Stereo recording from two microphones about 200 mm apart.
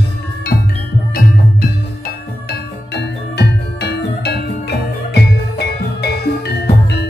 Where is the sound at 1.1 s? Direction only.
50° left (ahead or behind).